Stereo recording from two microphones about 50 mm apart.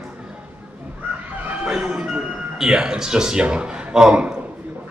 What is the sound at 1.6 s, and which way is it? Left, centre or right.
Speech, centre.